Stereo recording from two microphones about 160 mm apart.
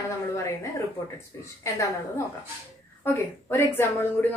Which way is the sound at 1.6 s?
20° left (ahead or behind).